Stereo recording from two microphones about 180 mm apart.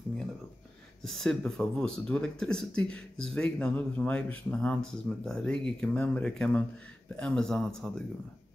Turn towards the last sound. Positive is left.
turn(degrees=5)  # may be behind; listen again after turning